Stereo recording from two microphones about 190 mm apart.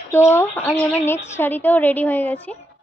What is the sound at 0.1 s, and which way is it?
A woman's voice, 10° left (ahead or behind).